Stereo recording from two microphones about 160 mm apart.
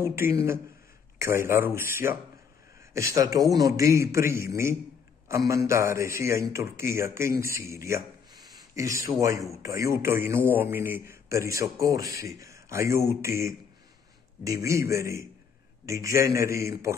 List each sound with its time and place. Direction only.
0.0 s a man's voice: 15° right (ahead or behind)
2.9 s a man's voice: 20° right (ahead or behind)
7.7 s a sound: 20° right (ahead or behind)
9.2 s a man's voice: 20° right (ahead or behind)